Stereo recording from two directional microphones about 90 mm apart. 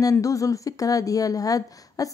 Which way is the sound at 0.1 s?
40° left (ahead or behind).